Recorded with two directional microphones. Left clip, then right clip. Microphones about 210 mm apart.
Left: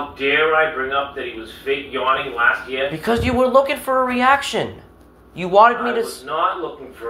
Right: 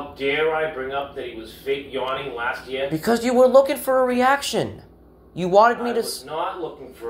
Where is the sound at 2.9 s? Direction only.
60° right (ahead or behind).